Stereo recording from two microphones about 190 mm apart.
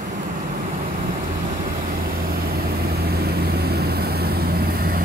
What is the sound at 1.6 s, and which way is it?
Vehicle, 50° right (ahead or behind).